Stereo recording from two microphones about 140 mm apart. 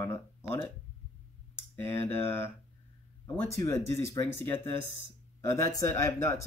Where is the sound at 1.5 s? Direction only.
15° left (ahead or behind).